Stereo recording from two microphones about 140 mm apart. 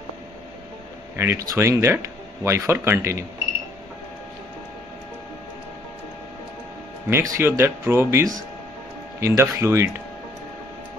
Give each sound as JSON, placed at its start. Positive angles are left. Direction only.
{"t": 1.1, "sound": "a man's voice", "side_deg": -20}
{"t": 7.1, "sound": "speech", "side_deg": -20}